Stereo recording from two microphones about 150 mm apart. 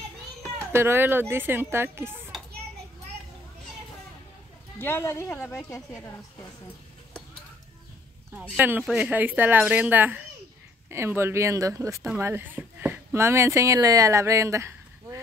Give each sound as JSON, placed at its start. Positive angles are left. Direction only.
{"t": 0.7, "sound": "a woman's voice", "side_deg": -15}
{"t": 4.7, "sound": "speech", "side_deg": 15}
{"t": 8.4, "sound": "a woman's voice", "side_deg": -10}
{"t": 8.8, "sound": "speech", "side_deg": 0}
{"t": 9.1, "sound": "a woman's voice", "side_deg": -10}